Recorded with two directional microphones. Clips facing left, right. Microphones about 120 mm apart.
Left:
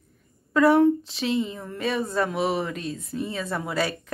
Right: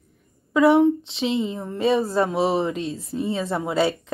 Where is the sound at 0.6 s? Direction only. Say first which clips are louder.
Right 2 dB; 25° right (ahead or behind).